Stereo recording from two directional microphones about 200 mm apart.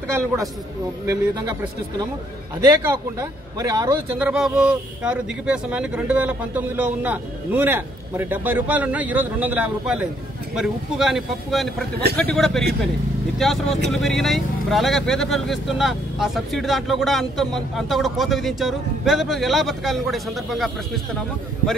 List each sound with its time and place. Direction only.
1.0 s speech: 15° right (ahead or behind)
4.2 s speech: 5° right (ahead or behind)